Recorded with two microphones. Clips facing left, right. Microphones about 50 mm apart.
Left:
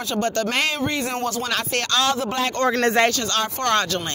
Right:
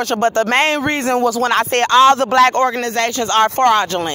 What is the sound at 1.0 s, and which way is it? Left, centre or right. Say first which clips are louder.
Speech: right 9 dB; right.